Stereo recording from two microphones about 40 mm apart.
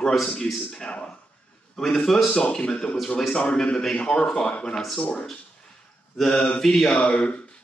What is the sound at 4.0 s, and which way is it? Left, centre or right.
Speech, left.